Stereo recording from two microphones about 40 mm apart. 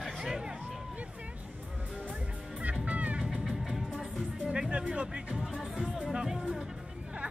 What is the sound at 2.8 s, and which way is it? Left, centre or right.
Speech, right.